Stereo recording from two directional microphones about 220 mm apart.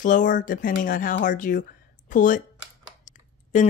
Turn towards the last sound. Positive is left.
turn(degrees=35)  # may be behind; listen again after turning